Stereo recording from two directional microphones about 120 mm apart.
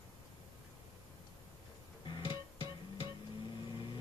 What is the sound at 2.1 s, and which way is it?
Music, 45° left (ahead or behind).